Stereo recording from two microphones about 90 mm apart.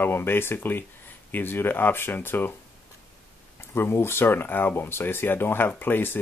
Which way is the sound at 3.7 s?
25° left (ahead or behind).